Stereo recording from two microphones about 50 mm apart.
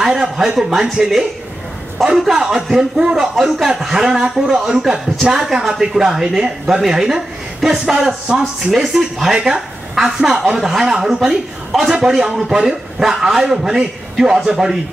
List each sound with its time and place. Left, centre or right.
0.0 s a sound: centre
0.4 s a man's voice: centre
2.1 s a man's voice: centre